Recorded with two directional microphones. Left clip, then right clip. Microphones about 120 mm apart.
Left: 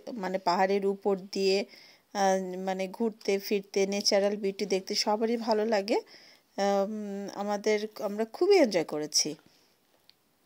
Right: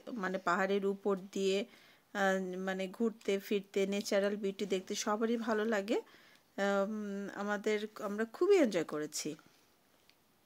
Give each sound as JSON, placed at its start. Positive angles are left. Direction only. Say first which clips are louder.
{"t": 0.0, "sound": "a woman's voice", "louder": "left 6 dB", "side_deg": 35}
{"t": 6.9, "sound": "speech", "louder": "left 4 dB", "side_deg": 15}
{"t": 7.2, "sound": "speech", "louder": "left 7 dB", "side_deg": 30}